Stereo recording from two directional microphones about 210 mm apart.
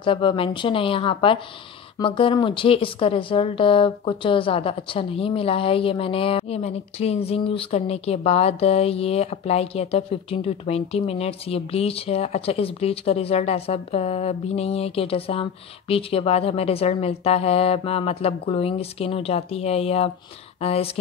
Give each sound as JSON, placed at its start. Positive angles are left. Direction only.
{"t": 0.0, "sound": "speech", "side_deg": 25}